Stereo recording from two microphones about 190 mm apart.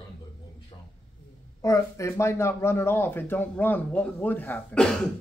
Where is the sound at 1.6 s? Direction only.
15° left (ahead or behind).